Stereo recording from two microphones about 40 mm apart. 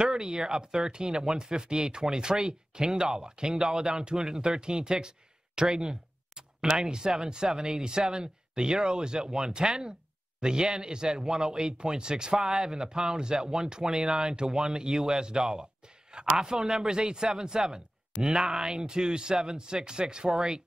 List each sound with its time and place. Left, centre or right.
0.0 s speech: centre
5.6 s a sound: centre
6.8 s speech: centre
16.3 s a man's voice: centre